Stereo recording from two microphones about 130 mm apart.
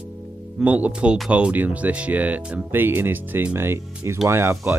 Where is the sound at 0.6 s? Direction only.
10° right (ahead or behind).